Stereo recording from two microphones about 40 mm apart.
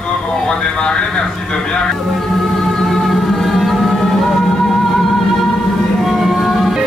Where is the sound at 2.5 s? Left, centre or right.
Centre.